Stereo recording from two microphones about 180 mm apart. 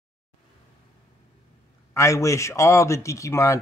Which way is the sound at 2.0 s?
15° left (ahead or behind).